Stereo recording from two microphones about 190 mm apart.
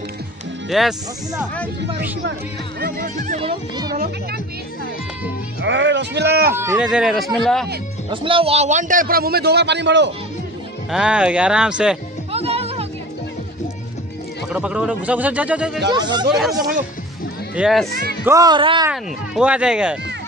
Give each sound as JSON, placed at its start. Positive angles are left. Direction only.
{"t": 0.7, "sound": "speech", "side_deg": 0}
{"t": 3.3, "sound": "speech", "side_deg": -30}
{"t": 3.9, "sound": "a man's voice", "side_deg": -50}
{"t": 5.6, "sound": "speech", "side_deg": -70}
{"t": 6.5, "sound": "speech", "side_deg": -15}
{"t": 8.1, "sound": "a man's voice", "side_deg": -25}
{"t": 10.9, "sound": "speech", "side_deg": -5}
{"t": 12.3, "sound": "music", "side_deg": -30}
{"t": 14.5, "sound": "a man's voice", "side_deg": -5}
{"t": 15.9, "sound": "speech", "side_deg": -20}
{"t": 16.5, "sound": "a man's voice", "side_deg": -45}
{"t": 17.6, "sound": "speech", "side_deg": 0}
{"t": 18.2, "sound": "speech", "side_deg": -15}
{"t": 18.9, "sound": "speech", "side_deg": -5}